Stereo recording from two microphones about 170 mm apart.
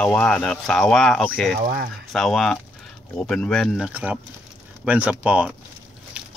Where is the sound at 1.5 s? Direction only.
65° right (ahead or behind).